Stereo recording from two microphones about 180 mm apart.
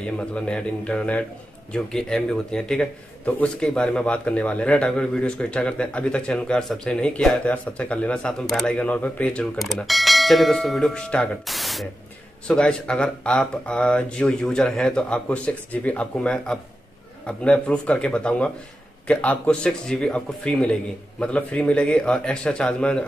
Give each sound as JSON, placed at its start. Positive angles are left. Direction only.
{"t": 0.0, "sound": "a man's voice", "side_deg": 5}